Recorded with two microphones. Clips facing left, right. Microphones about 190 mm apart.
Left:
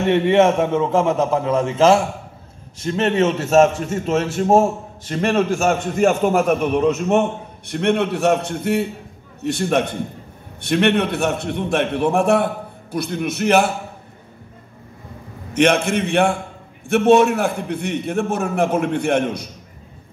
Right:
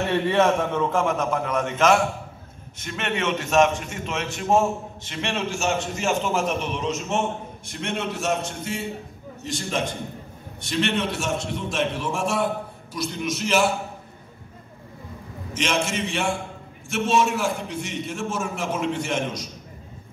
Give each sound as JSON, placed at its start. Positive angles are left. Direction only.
{"t": 0.1, "sound": "a man's voice", "side_deg": 20}
{"t": 15.5, "sound": "a man's voice", "side_deg": 60}